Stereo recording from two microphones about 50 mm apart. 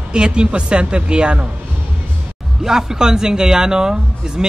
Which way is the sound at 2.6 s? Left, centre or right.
Centre.